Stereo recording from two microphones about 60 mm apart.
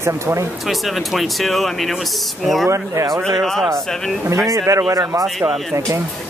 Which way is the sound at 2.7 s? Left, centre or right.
Right.